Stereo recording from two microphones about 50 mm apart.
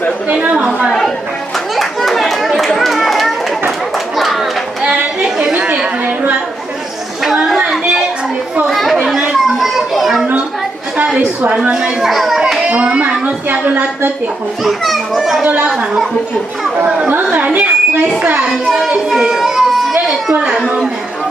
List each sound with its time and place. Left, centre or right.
0.3 s a woman's voice: centre
1.8 s a sound: centre
4.8 s chatter: right
8.6 s chatter: centre
9.3 s children playing: centre
11.6 s a child's voice: right
12.0 s a child's voice: centre
12.6 s a child's voice: right
14.6 s a child's voice: centre
15.4 s speech: right
17.1 s a child's voice: right
19.2 s a sound: centre
19.9 s a woman's voice: centre